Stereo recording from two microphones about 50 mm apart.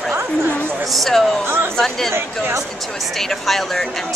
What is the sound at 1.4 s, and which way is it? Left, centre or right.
Speech, right.